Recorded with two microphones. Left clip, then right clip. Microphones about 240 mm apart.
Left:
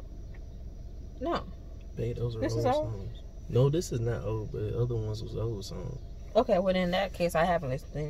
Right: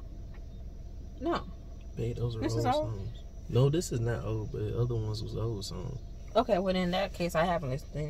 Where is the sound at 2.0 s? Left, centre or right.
Centre.